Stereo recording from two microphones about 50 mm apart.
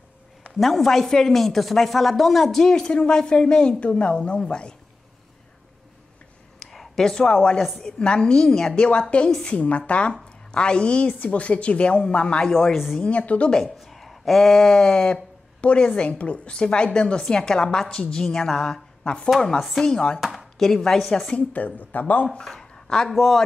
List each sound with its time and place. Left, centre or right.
0.6 s a woman's voice: centre
6.6 s a sound: centre
7.2 s a woman's voice: centre
13.0 s a woman's voice: left
13.7 s a woman's voice: centre
19.3 s a woman's voice: centre
20.2 s chopping: centre
21.4 s speech: left
22.5 s a sound: centre
23.0 s a woman's voice: centre